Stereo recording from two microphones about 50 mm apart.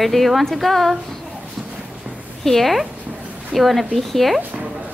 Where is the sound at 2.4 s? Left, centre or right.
Centre.